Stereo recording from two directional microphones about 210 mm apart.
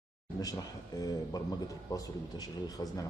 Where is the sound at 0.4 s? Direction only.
15° left (ahead or behind).